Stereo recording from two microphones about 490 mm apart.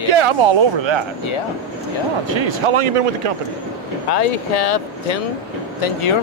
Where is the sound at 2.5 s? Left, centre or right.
Right.